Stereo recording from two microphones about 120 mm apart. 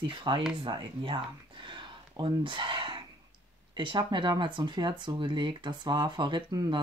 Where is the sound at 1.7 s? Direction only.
40° right (ahead or behind).